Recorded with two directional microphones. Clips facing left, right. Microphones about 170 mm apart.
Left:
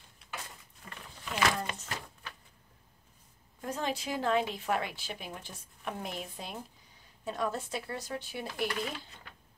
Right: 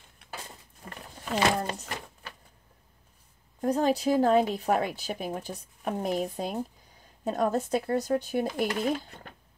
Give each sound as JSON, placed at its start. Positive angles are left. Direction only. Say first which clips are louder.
{"t": 0.8, "sound": "a sound", "louder": "right 6 dB", "side_deg": -45}
{"t": 1.4, "sound": "a woman's voice", "louder": "right 4 dB", "side_deg": -40}
{"t": 3.6, "sound": "a woman's voice", "louder": "right 10 dB", "side_deg": -40}